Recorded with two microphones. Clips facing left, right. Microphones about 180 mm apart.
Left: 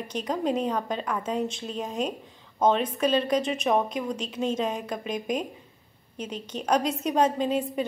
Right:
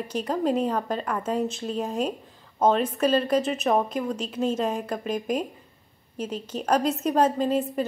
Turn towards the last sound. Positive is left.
turn(degrees=-5)  # may be behind; listen again after turning